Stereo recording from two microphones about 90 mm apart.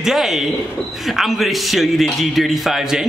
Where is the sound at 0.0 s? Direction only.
5° right (ahead or behind).